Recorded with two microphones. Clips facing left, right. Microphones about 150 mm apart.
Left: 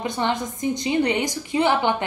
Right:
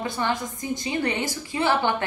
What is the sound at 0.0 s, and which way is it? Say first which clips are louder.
A woman's voice: left 2 dB; 20° left (ahead or behind).